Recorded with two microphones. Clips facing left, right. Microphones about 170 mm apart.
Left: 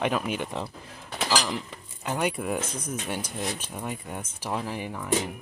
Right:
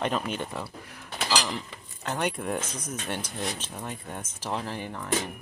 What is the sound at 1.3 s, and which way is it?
Cutlery, 5° left (ahead or behind).